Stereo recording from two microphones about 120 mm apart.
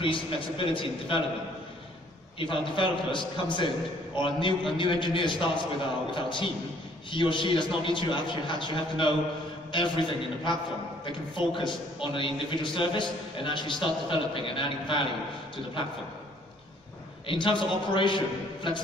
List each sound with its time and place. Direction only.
0.0 s a man's voice: 45° left (ahead or behind)
2.3 s a man's voice: 45° left (ahead or behind)
17.3 s a man's voice: 45° left (ahead or behind)